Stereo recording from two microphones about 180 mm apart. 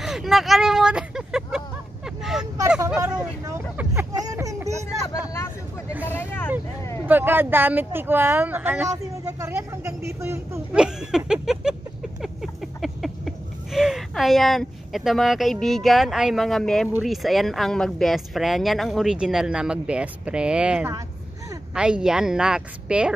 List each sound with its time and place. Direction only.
0.0 s speech: centre (ahead or behind)
2.0 s vehicle: centre (ahead or behind)
3.4 s a sound: 15° right (ahead or behind)
6.0 s speech: 10° left (ahead or behind)
7.1 s speech: 10° right (ahead or behind)
8.9 s a sound: 15° right (ahead or behind); by 16.9 s centre (ahead or behind)
17.0 s speech: centre (ahead or behind)